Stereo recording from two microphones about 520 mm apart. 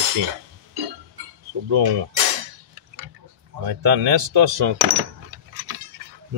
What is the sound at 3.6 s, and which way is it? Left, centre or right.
Speech, right.